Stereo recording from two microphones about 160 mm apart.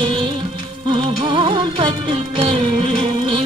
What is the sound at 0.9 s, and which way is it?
Music, 30° right (ahead or behind).